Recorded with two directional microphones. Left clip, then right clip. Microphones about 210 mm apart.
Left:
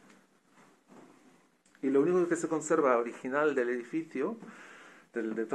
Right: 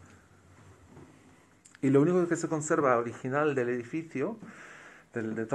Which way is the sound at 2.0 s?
25° right (ahead or behind).